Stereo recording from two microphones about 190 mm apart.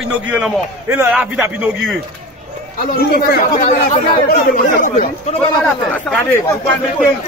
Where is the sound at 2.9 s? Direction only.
50° left (ahead or behind).